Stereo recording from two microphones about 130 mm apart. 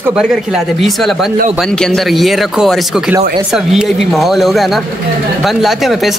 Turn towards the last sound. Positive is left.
turn(degrees=0)  # may be behind; listen again after turning